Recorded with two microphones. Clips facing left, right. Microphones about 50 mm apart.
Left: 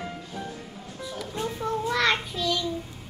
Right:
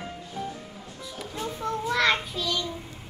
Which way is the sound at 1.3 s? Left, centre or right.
Centre.